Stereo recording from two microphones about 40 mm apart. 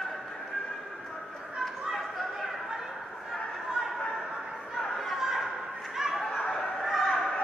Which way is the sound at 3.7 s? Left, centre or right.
Centre.